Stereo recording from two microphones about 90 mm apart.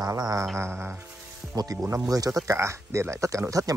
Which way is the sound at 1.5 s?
45° right (ahead or behind).